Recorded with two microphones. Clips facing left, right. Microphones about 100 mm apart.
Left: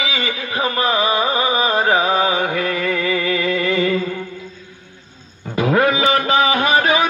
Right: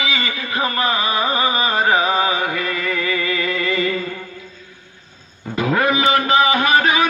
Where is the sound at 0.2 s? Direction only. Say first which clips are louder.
Left 1 dB; 20° left (ahead or behind).